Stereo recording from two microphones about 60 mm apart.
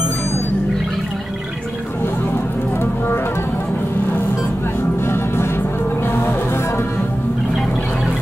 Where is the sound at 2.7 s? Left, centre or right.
Left.